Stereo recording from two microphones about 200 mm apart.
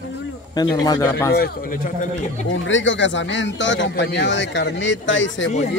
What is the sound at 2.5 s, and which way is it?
A man's voice, 70° left (ahead or behind).